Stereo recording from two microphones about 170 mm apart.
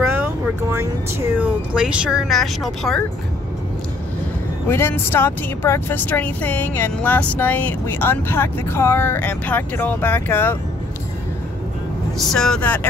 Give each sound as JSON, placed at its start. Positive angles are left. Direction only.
{"t": 0.0, "sound": "vehicle", "side_deg": -10}
{"t": 1.4, "sound": "speech", "side_deg": -5}
{"t": 4.6, "sound": "speech", "side_deg": 15}
{"t": 12.2, "sound": "speech", "side_deg": 5}